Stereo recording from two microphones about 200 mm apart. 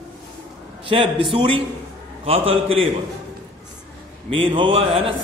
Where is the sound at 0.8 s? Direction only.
25° right (ahead or behind).